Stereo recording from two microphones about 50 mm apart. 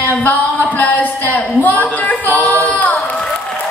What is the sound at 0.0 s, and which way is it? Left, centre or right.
Speech, left.